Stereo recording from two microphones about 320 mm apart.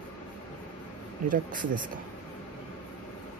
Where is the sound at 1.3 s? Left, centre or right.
Right.